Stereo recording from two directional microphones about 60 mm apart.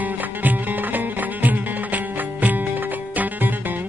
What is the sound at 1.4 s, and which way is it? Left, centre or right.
Music, right.